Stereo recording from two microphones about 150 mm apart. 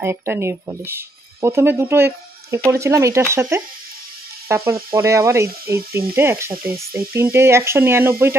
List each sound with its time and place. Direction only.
0.0 s speech: 15° right (ahead or behind)